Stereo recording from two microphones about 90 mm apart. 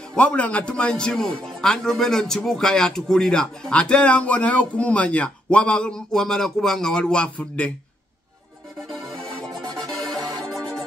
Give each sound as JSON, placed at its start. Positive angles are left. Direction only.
{"t": 0.1, "sound": "a man's voice", "side_deg": 15}
{"t": 9.8, "sound": "music", "side_deg": 5}